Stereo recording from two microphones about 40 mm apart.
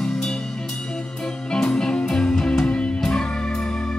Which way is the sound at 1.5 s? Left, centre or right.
Centre.